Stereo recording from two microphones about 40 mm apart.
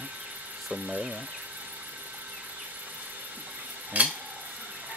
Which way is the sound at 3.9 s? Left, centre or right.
Right.